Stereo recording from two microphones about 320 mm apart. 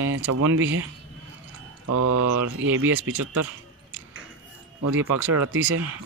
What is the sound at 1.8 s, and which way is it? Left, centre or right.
Speech, right.